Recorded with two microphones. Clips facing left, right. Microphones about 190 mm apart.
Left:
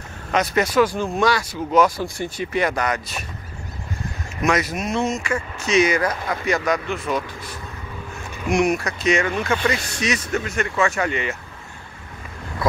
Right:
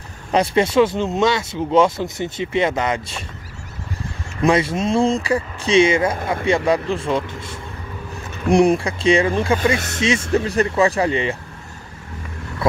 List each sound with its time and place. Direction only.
0.3 s speech: 30° right (ahead or behind)
4.4 s speech: 30° right (ahead or behind)